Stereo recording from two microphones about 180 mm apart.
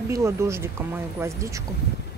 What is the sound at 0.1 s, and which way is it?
Speech, 15° right (ahead or behind).